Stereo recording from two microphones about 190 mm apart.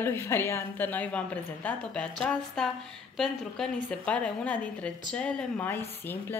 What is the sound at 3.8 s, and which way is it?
A woman's voice, 5° left (ahead or behind).